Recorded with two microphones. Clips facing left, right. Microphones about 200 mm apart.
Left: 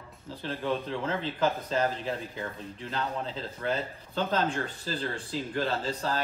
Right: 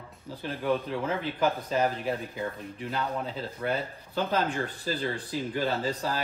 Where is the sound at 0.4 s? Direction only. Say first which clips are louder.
Right 2 dB; 10° right (ahead or behind).